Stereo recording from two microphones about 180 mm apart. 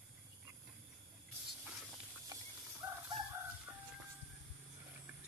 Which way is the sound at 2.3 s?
20° right (ahead or behind).